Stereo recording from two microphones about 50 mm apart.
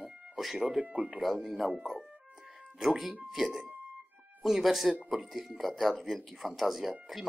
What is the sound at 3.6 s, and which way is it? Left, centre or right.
Music, right.